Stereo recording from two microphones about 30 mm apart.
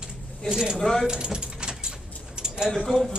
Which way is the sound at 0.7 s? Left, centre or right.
Centre.